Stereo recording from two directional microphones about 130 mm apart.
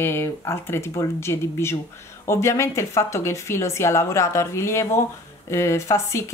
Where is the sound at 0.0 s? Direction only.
20° left (ahead or behind).